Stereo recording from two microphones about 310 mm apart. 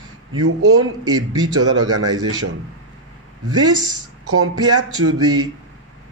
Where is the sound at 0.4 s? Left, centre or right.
Right.